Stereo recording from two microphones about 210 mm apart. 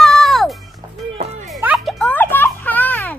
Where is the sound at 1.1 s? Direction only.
35° right (ahead or behind).